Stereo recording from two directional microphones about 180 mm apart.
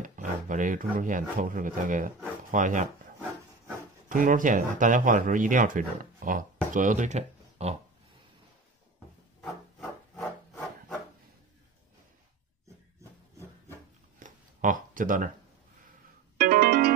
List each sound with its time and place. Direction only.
0.0 s speech: 45° right (ahead or behind)
4.1 s speech: 50° right (ahead or behind)
9.4 s rub: centre (ahead or behind)
14.2 s a sound: 45° right (ahead or behind)
16.3 s music: 50° right (ahead or behind)